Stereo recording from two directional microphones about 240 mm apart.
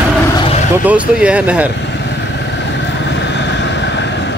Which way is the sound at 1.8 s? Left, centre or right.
Left.